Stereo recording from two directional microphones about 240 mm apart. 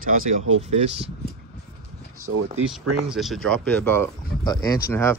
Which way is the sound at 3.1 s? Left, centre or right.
Centre.